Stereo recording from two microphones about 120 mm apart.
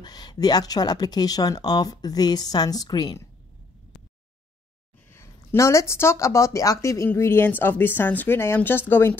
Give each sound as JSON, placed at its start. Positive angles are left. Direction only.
{"t": 0.0, "sound": "speech", "side_deg": 35}
{"t": 5.1, "sound": "speech", "side_deg": 20}